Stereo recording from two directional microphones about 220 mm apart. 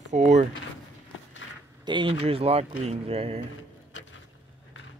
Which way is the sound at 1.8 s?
20° right (ahead or behind).